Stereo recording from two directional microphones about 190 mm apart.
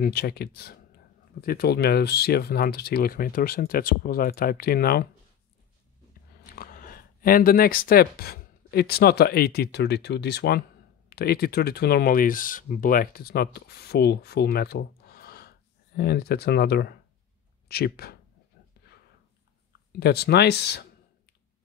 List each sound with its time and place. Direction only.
0.0 s speech: 55° left (ahead or behind)
6.5 s speech: 50° left (ahead or behind)
20.0 s speech: 60° left (ahead or behind)